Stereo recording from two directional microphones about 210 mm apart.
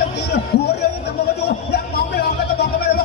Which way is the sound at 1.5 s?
50° left (ahead or behind).